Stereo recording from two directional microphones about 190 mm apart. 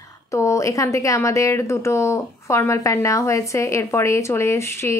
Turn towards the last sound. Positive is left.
turn(degrees=15)  # may be behind; listen again after turning